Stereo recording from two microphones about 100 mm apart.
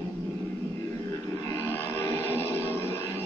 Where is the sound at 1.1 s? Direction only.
25° left (ahead or behind).